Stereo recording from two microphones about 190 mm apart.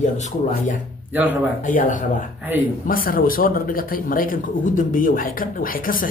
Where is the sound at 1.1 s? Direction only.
10° right (ahead or behind).